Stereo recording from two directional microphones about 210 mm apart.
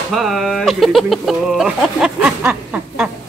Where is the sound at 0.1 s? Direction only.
Centre (ahead or behind).